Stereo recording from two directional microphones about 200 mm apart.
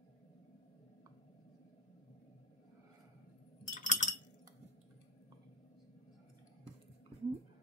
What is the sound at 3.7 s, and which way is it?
Chink, 40° left (ahead or behind).